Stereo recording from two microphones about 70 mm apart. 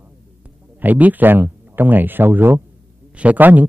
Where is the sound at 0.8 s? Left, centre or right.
Right.